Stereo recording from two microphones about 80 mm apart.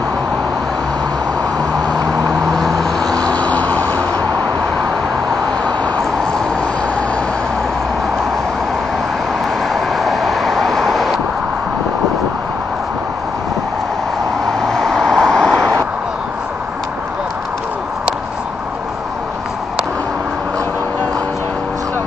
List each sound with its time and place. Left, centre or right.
2.2 s vehicle: centre; by 4.0 s left
5.6 s vehicle: centre
9.7 s vehicle: centre
14.7 s vehicle: centre